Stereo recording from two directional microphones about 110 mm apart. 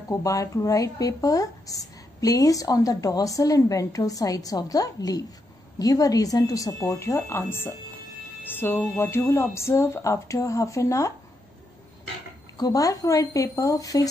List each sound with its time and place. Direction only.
0.1 s speech: 30° left (ahead or behind)
8.7 s speech: 20° left (ahead or behind)
12.5 s speech: 35° left (ahead or behind)